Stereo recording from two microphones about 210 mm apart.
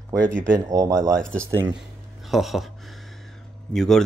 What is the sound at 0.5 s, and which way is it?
Speech, 15° right (ahead or behind).